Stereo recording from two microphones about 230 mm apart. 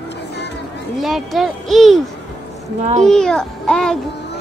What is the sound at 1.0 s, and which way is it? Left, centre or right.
Speech, centre.